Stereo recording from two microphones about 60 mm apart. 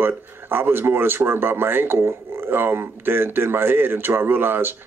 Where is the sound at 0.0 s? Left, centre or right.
Right.